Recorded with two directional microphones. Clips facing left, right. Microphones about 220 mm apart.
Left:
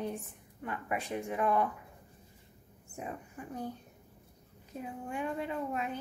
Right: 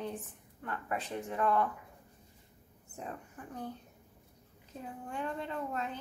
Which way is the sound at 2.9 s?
10° left (ahead or behind).